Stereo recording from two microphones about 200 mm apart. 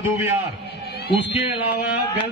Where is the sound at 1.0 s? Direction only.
55° left (ahead or behind).